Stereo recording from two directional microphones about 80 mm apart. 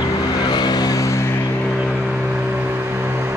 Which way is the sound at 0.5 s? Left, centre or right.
Left.